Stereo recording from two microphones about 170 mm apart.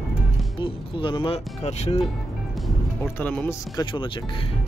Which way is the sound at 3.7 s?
30° left (ahead or behind).